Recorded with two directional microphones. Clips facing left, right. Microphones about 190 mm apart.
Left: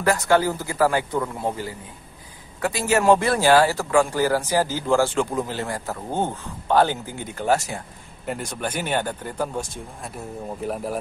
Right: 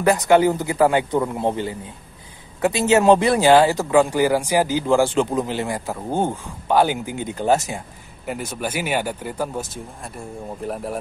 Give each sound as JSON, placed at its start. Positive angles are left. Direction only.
{"t": 0.0, "sound": "speech", "side_deg": -20}
{"t": 8.3, "sound": "speech", "side_deg": 0}